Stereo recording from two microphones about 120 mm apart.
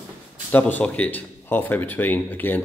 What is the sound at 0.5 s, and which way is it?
Speech, 15° left (ahead or behind).